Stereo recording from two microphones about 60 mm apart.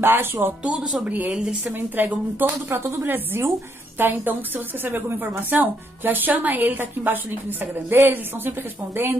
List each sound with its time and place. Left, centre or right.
0.0 s a woman's voice: right
2.4 s a woman's voice: right